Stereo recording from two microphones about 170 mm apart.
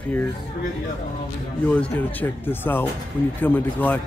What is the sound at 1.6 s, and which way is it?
Speech, 10° left (ahead or behind).